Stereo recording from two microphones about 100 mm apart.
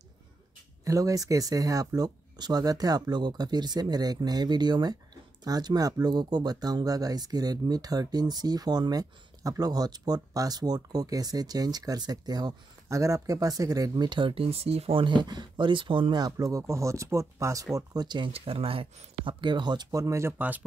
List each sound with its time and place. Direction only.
0.8 s speech: 35° right (ahead or behind); by 16.2 s 55° right (ahead or behind)
16.2 s speech: 40° right (ahead or behind)
17.7 s speech: 45° right (ahead or behind)
18.3 s speech: 70° right (ahead or behind); by 20.3 s 30° right (ahead or behind)
20.3 s speech: 15° right (ahead or behind)